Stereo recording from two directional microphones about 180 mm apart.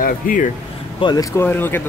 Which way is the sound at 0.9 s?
25° left (ahead or behind).